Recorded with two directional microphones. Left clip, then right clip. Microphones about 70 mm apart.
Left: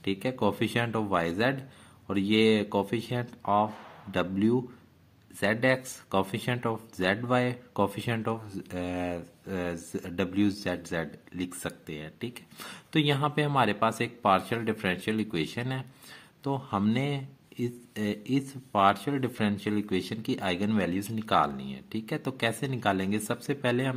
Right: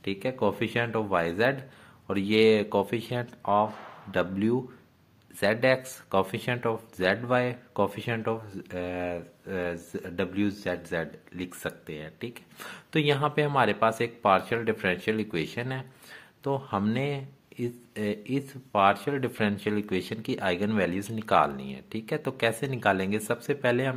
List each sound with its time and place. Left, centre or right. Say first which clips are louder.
0.0 s speech: right 1 dB; left
2.0 s speech: right 3 dB; left
7.8 s speech: right 1 dB; left